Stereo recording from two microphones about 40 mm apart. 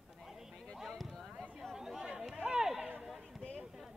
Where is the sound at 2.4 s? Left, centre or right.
Centre.